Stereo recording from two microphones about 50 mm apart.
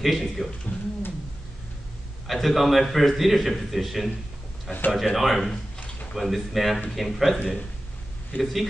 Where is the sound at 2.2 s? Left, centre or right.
Centre.